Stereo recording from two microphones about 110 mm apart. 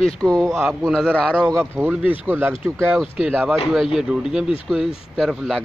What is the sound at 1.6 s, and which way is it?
Speech, 20° right (ahead or behind).